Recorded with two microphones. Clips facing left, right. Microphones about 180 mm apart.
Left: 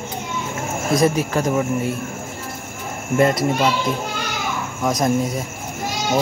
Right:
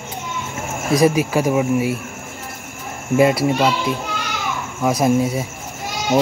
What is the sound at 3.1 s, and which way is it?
Speech, 5° right (ahead or behind).